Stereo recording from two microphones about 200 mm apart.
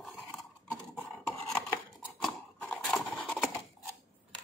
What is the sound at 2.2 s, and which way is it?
Horse, 5° left (ahead or behind).